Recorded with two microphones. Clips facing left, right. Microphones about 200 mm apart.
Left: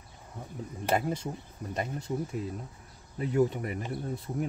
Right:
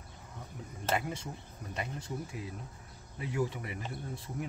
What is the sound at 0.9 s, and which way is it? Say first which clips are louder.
Speech: left 7 dB; 35° left (ahead or behind).